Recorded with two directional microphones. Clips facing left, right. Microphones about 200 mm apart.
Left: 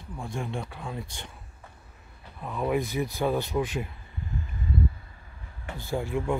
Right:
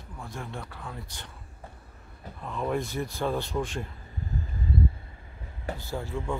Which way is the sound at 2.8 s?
15° left (ahead or behind).